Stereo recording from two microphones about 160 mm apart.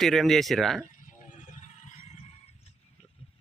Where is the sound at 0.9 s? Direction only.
55° left (ahead or behind).